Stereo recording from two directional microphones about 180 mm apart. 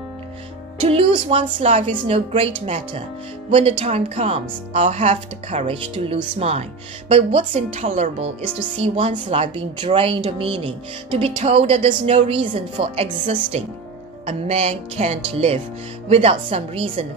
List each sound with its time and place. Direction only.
0.7 s speech: 30° right (ahead or behind)